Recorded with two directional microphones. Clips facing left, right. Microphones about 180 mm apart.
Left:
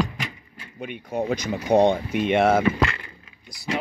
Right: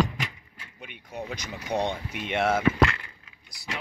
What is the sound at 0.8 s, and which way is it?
Speech, 45° left (ahead or behind).